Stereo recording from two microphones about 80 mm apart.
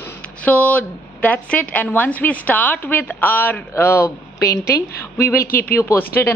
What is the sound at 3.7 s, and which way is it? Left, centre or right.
A woman's voice, left.